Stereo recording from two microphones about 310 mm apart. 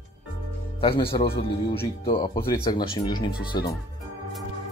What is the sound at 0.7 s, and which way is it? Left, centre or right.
Speech, centre.